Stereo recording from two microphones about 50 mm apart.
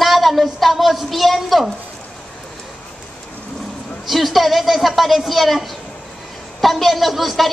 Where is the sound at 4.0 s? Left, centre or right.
Centre.